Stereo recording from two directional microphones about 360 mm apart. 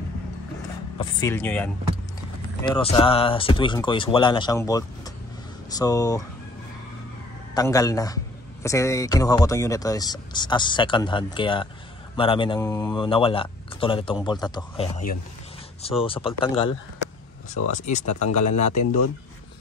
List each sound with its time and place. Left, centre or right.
1.2 s speech: centre
2.7 s speech: centre
7.5 s speech: centre
17.7 s speech: centre
18.0 s speech: left